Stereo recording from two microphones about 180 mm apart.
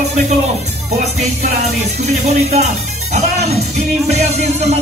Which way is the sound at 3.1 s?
40° right (ahead or behind).